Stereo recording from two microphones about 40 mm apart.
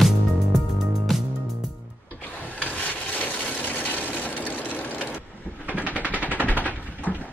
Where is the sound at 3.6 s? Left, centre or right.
Left.